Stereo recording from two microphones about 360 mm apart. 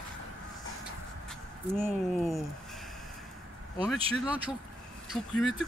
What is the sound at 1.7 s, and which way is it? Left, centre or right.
Speech, centre.